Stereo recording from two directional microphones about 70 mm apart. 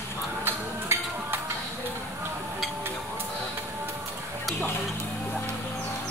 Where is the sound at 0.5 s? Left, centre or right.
Right.